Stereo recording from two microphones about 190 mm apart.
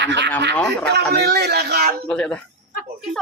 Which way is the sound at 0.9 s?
60° right (ahead or behind).